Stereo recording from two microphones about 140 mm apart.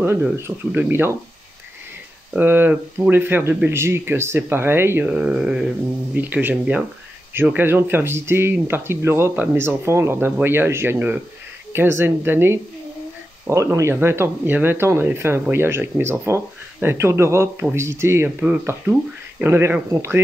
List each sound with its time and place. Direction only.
0.0 s speech: 15° right (ahead or behind)
2.3 s speech: 15° right (ahead or behind)